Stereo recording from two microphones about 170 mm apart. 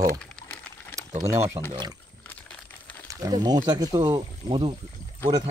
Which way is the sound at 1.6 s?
35° right (ahead or behind).